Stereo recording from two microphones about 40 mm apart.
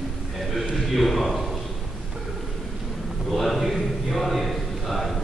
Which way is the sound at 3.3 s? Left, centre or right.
Centre.